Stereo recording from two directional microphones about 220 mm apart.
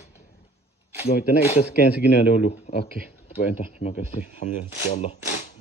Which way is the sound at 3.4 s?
30° left (ahead or behind).